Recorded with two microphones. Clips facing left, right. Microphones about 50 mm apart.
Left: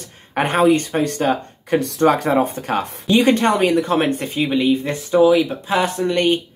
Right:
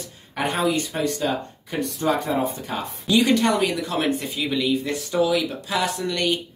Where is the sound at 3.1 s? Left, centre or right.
Left.